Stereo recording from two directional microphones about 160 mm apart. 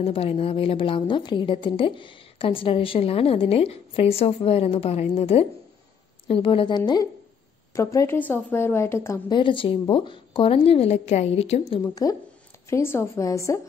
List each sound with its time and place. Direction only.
0.0 s a woman's voice: 40° left (ahead or behind); by 9.2 s 15° left (ahead or behind)
9.3 s a woman's voice: 30° left (ahead or behind)
11.8 s a woman's voice: 20° left (ahead or behind)